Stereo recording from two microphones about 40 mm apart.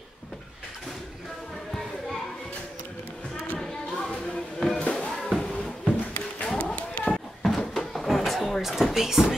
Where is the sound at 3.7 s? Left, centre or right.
Left.